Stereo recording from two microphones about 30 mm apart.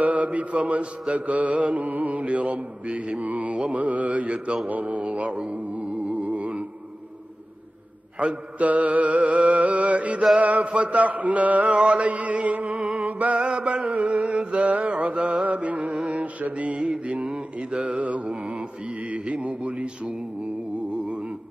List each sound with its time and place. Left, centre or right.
0.0 s mantra: right
1.9 s mantra: right
5.5 s music: right
8.2 s mantra: right
11.7 s mantra: right
13.0 s a sound: right
13.4 s music: right
13.9 s a sound: right
14.8 s mantra: right
15.4 s music: right
17.0 s mantra: right
17.9 s mantra: right
18.2 s mantra: right